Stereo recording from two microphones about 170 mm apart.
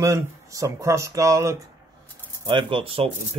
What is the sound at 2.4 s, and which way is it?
Speech, 30° right (ahead or behind).